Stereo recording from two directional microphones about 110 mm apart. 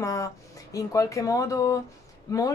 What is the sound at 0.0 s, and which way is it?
Speech, 30° left (ahead or behind).